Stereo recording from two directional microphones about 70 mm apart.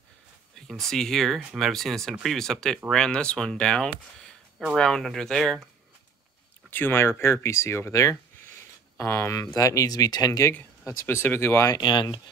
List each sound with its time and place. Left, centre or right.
0.6 s speech: centre
6.7 s speech: left
9.6 s speech: left
11.1 s speech: left
11.7 s speech: left